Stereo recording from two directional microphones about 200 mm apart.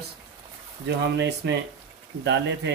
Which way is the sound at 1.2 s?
60° right (ahead or behind).